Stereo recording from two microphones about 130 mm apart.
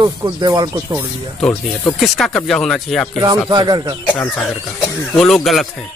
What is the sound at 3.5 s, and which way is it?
Speech, 35° right (ahead or behind).